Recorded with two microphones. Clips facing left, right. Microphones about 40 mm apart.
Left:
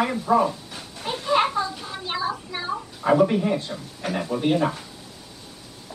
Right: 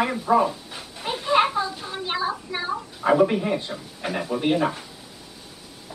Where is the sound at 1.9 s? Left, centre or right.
Centre.